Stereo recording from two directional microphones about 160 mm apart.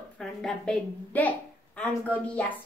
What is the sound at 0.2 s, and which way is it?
A woman's voice, centre (ahead or behind).